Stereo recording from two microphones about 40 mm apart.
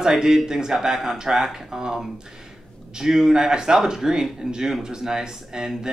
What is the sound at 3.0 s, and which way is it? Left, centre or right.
Speech, centre.